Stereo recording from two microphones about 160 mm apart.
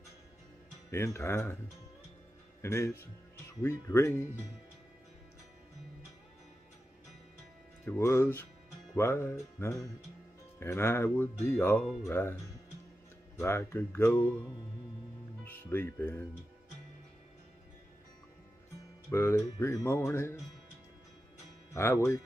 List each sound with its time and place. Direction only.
0.8 s music: 15° left (ahead or behind)
2.6 s music: 15° left (ahead or behind)
7.8 s music: 15° left (ahead or behind)
13.4 s music: 15° left (ahead or behind)
15.4 s speech: 15° left (ahead or behind)
19.0 s music: 15° left (ahead or behind)
21.7 s speech: 15° left (ahead or behind)